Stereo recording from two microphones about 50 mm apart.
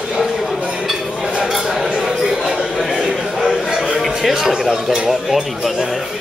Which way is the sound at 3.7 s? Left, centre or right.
Centre.